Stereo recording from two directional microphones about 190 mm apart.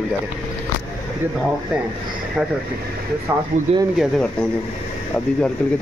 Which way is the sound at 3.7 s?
35° right (ahead or behind).